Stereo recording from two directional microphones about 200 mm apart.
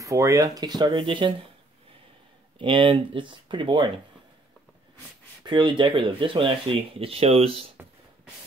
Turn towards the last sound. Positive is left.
turn(degrees=-30)  # may be behind; listen again after turning